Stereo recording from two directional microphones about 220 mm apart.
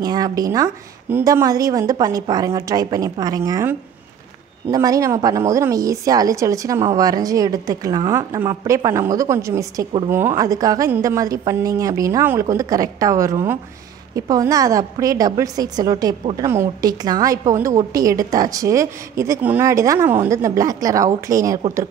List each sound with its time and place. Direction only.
0.0 s a woman's voice: 15° right (ahead or behind)